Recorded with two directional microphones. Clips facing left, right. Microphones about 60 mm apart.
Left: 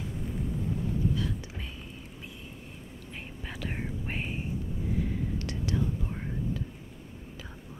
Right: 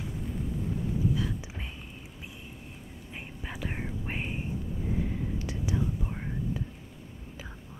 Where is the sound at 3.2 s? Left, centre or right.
Centre.